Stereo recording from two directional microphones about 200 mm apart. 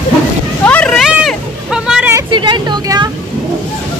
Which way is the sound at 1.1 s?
5° right (ahead or behind).